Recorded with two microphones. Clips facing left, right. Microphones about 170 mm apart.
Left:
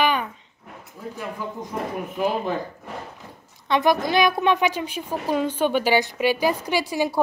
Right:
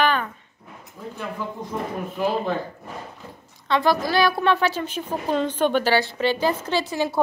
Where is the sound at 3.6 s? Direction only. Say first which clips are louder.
Left 1 dB; 20° left (ahead or behind).